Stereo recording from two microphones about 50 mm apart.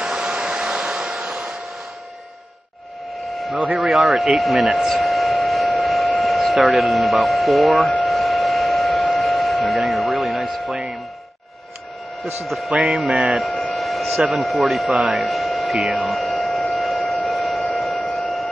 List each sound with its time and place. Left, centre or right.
0.0 s hair dryer: centre
3.2 s a sound: centre
3.7 s speech: centre
8.0 s hum: centre
12.4 s music: centre
13.7 s speech: centre
16.0 s a sound: centre
18.0 s civil defense siren: centre